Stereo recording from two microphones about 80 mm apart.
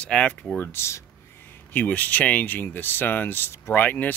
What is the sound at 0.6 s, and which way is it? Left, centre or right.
Speech, left.